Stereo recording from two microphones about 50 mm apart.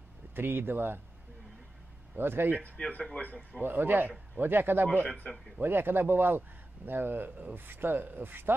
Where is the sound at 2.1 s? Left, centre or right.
Right.